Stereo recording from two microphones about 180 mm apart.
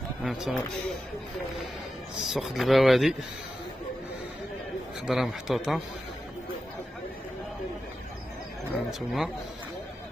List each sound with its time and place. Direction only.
0.2 s speech: centre (ahead or behind)
2.2 s speech: centre (ahead or behind)
5.0 s speech: centre (ahead or behind)
8.6 s speech: 5° right (ahead or behind)